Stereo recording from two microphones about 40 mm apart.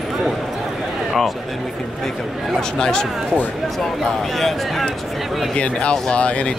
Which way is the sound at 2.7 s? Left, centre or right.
Centre.